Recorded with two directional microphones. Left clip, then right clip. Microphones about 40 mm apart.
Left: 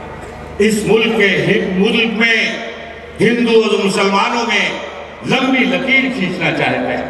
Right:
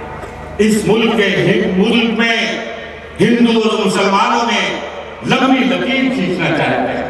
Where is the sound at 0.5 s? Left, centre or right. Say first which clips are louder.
Left 1 dB; left.